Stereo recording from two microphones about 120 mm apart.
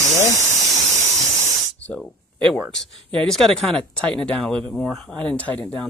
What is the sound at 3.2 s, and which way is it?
Speech, 5° left (ahead or behind).